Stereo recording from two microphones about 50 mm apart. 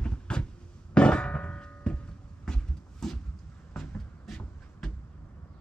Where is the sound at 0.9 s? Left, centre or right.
Centre.